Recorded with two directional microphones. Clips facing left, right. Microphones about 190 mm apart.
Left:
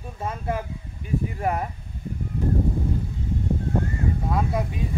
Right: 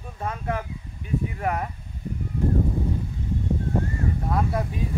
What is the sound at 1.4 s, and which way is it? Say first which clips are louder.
Speech: left 2 dB; 25° left (ahead or behind).